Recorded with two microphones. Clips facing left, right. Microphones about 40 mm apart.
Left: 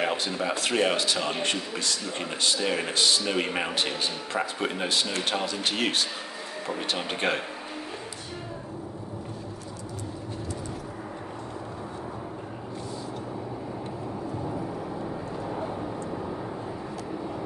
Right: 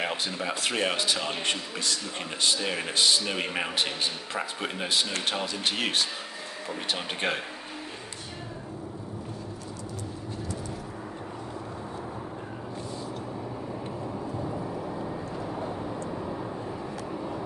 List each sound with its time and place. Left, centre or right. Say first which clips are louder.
0.0 s a man's voice: left 3 dB; centre
14.9 s vehicle: left 1 dB; centre
15.5 s vehicle: left 2 dB; centre